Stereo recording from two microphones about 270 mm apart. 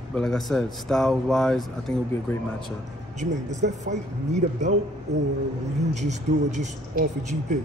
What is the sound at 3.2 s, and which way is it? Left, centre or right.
Speech, right.